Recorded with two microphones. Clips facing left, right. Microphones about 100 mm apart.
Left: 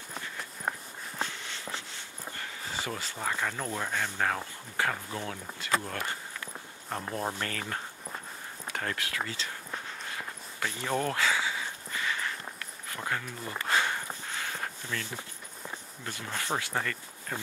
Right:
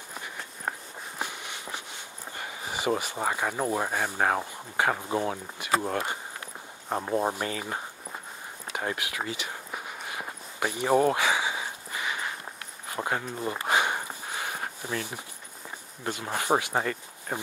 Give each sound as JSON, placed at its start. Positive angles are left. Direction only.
{"t": 0.2, "sound": "walk", "side_deg": -15}
{"t": 3.0, "sound": "speech", "side_deg": -20}
{"t": 8.7, "sound": "a sound", "side_deg": -15}
{"t": 16.1, "sound": "speech", "side_deg": -20}